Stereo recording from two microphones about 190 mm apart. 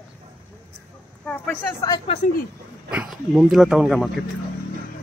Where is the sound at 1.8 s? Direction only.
20° left (ahead or behind).